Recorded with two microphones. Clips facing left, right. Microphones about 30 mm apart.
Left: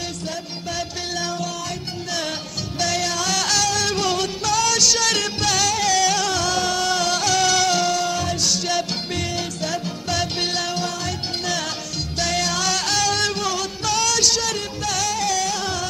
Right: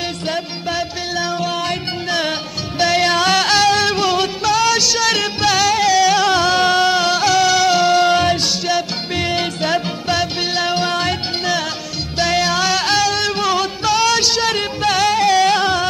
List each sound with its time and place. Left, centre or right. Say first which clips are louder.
0.7 s music: right 4 dB; right
7.9 s music: right 9 dB; right
10.1 s music: right 3 dB; right
12.2 s music: right 6 dB; right
13.4 s music: right 7 dB; right